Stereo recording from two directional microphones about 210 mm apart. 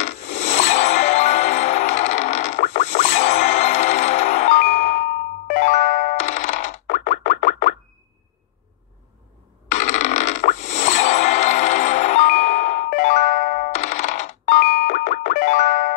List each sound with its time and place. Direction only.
0.0 s music: 30° left (ahead or behind)
9.7 s music: 35° left (ahead or behind)